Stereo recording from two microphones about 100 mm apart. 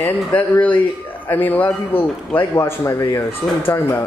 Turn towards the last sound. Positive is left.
turn(degrees=20)  # may be behind; listen again after turning